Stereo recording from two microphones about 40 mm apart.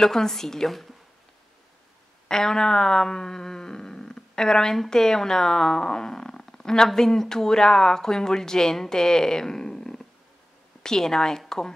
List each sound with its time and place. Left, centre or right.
0.0 s speech: centre
2.2 s speech: centre